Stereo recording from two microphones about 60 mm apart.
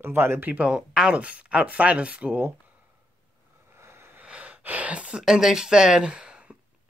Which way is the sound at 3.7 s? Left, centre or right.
Right.